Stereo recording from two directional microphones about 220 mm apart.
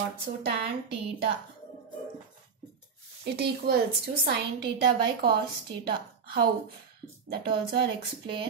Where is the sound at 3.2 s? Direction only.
45° right (ahead or behind).